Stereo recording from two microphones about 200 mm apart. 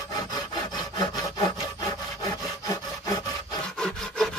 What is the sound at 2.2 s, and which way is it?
Rub, 20° left (ahead or behind).